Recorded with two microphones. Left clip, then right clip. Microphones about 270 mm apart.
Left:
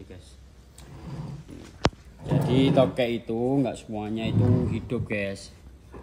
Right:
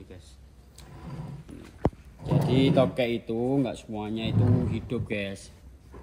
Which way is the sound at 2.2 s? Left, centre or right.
Centre.